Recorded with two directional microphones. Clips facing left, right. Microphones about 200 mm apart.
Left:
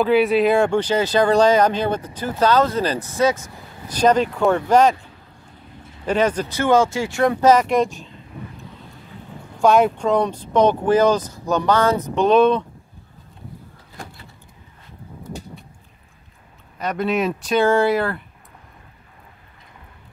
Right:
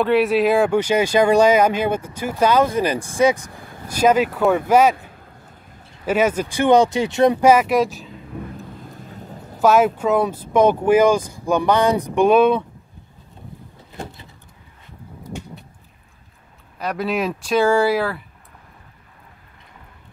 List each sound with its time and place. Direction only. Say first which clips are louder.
0.0 s speech: even; centre (ahead or behind)
6.0 s speech: right 1 dB; 10° right (ahead or behind)
7.5 s speech: right 1 dB; 5° right (ahead or behind)
9.6 s speech: even; 5° right (ahead or behind)
16.7 s speech: left 1 dB; centre (ahead or behind)